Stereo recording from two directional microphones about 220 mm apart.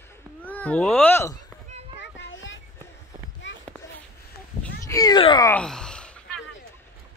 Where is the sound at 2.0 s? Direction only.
55° left (ahead or behind).